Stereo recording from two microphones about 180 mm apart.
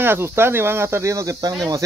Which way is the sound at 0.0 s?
15° right (ahead or behind).